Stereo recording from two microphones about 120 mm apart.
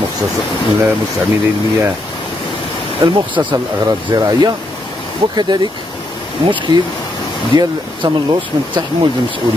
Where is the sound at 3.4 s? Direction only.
30° right (ahead or behind).